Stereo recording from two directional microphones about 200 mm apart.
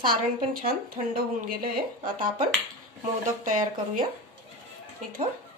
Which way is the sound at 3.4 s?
40° right (ahead or behind).